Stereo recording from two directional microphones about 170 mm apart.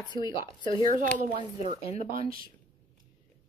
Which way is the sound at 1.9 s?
35° left (ahead or behind).